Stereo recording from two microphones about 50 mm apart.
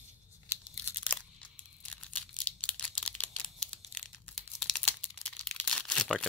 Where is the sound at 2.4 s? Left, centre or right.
Left.